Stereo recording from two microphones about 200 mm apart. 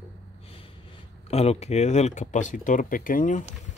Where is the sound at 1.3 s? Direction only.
30° left (ahead or behind).